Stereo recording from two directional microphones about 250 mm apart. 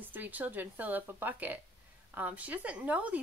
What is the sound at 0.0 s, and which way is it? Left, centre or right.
A woman's voice, centre.